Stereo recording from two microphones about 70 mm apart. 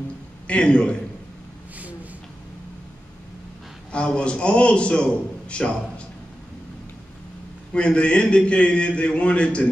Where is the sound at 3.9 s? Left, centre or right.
Centre.